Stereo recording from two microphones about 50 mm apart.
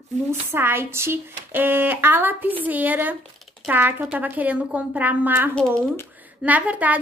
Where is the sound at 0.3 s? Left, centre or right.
Right.